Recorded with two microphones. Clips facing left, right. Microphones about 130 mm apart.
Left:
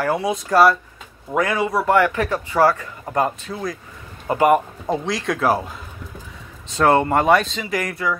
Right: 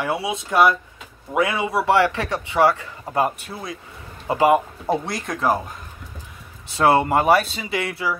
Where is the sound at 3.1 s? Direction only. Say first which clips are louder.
Left 1 dB; 10° right (ahead or behind).